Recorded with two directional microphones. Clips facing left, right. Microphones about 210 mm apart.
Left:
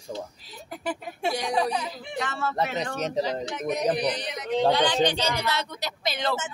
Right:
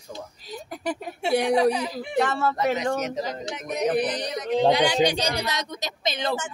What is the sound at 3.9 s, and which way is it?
Speech, 50° right (ahead or behind).